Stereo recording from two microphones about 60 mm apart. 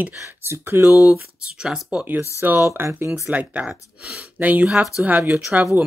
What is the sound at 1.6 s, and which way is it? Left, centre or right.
Speech, centre.